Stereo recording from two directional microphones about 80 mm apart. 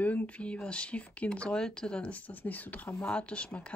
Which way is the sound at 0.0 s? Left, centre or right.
Centre.